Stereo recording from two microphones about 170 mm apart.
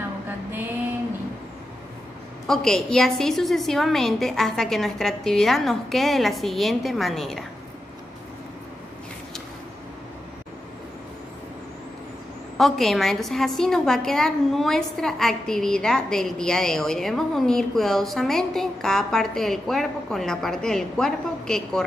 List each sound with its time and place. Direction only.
2.4 s a woman's voice: 5° left (ahead or behind)
12.5 s a woman's voice: centre (ahead or behind)